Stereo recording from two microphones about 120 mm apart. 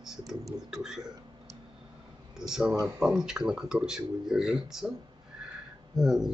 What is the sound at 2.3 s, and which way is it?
Speech, 5° right (ahead or behind).